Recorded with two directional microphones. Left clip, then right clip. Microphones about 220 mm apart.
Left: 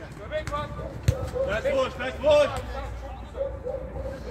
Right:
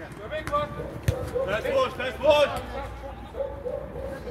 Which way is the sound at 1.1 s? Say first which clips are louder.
Even; 10° left (ahead or behind).